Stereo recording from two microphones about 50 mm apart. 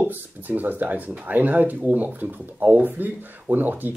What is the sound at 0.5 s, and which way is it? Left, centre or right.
Speech, right.